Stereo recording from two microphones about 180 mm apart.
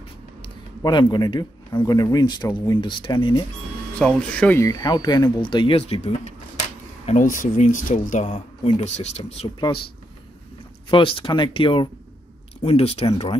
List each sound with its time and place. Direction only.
0.4 s a sound: 25° left (ahead or behind)
1.8 s speech: 20° left (ahead or behind)
4.0 s speech: 5° left (ahead or behind); by 6.1 s 35° left (ahead or behind)
7.1 s speech: 45° left (ahead or behind); by 9.8 s 30° left (ahead or behind)
10.9 s speech: 30° left (ahead or behind)